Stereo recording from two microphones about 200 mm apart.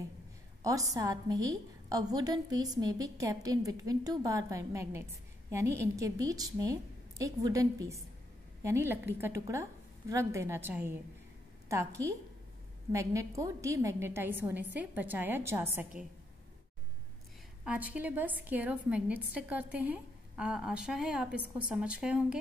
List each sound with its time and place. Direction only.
0.6 s a woman's voice: 15° right (ahead or behind)
17.6 s a woman's voice: 10° right (ahead or behind)